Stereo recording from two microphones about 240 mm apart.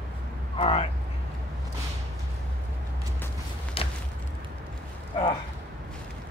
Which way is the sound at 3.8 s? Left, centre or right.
Left.